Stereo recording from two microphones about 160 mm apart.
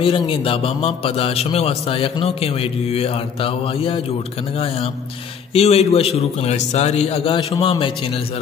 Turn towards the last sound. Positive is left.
turn(degrees=30)  # may be behind; listen again after turning